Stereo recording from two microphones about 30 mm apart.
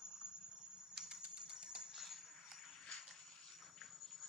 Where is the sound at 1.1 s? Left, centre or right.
Right.